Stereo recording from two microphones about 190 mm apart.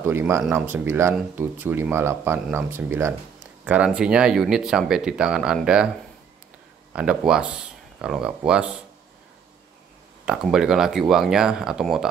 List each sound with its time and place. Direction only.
0.0 s speech: 10° right (ahead or behind)
6.9 s speech: 5° right (ahead or behind)
10.2 s speech: 5° right (ahead or behind)